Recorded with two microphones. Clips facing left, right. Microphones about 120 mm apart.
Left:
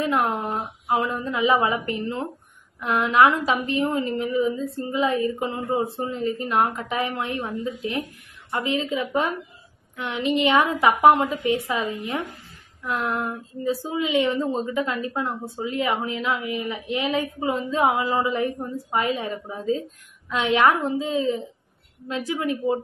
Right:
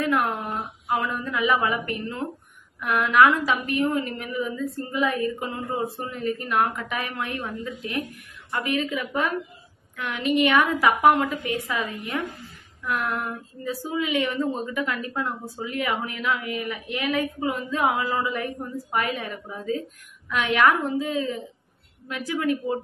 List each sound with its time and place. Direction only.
0.0 s a woman's voice: 20° left (ahead or behind)